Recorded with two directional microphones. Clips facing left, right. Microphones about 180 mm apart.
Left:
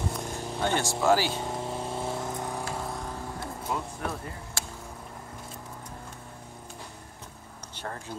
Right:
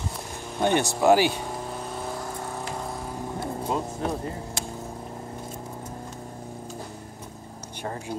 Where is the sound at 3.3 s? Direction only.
25° right (ahead or behind).